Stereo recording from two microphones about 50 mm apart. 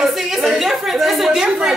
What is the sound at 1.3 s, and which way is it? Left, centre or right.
Speech, centre.